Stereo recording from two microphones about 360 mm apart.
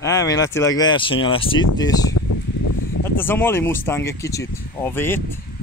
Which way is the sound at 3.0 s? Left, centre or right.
Centre.